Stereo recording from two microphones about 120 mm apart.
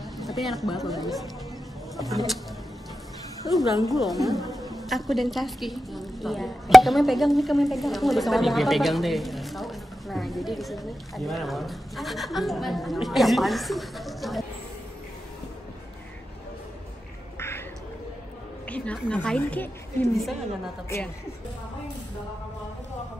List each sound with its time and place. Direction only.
0.2 s a woman's voice: centre (ahead or behind)
3.5 s a woman's voice: centre (ahead or behind)
17.4 s quack: 20° left (ahead or behind)
18.7 s a woman's voice: 10° left (ahead or behind)